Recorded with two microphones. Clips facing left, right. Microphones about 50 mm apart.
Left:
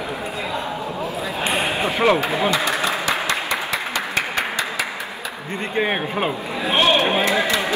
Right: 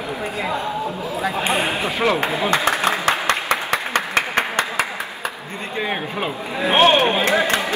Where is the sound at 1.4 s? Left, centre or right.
Right.